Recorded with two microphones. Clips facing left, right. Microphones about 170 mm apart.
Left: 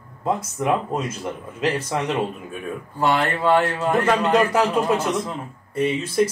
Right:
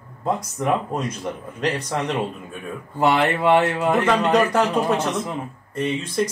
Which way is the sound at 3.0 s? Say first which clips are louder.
Right 2 dB; 25° right (ahead or behind).